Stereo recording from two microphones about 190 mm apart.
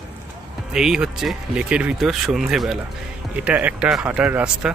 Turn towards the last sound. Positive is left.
turn(degrees=-5)  # may be behind; listen again after turning